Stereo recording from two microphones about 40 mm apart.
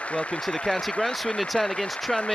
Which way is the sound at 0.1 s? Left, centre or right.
Left.